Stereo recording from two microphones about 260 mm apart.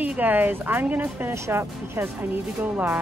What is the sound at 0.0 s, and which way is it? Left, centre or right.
Speech, centre.